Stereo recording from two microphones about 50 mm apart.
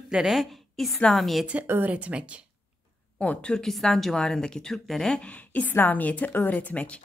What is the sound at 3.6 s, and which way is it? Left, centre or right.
A woman's voice, centre.